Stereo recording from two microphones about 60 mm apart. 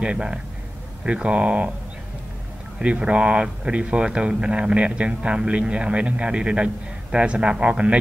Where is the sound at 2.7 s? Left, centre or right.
Centre.